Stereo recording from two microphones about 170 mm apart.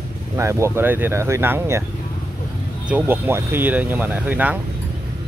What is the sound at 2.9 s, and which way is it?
Speech, 10° right (ahead or behind).